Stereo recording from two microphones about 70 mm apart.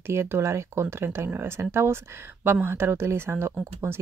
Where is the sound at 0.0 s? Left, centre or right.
Right.